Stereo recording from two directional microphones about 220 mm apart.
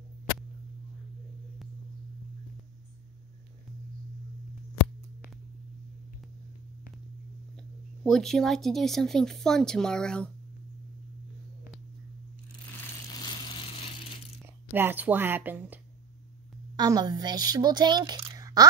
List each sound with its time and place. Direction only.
7.5 s a woman's voice: centre (ahead or behind)
14.7 s speech: 10° right (ahead or behind)